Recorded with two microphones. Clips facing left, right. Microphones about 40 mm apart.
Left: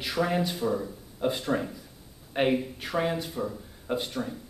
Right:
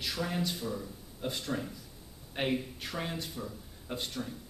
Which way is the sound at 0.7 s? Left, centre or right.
Left.